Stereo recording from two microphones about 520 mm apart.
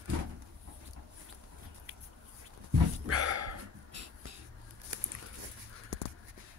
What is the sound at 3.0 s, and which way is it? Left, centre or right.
Dog, right.